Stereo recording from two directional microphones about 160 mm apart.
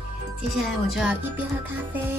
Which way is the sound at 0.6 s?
Centre (ahead or behind).